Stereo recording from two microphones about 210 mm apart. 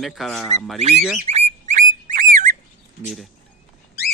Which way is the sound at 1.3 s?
35° right (ahead or behind).